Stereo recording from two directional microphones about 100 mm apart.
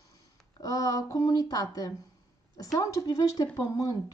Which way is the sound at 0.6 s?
35° left (ahead or behind).